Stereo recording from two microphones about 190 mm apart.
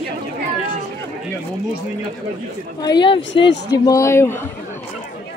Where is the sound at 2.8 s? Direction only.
25° left (ahead or behind).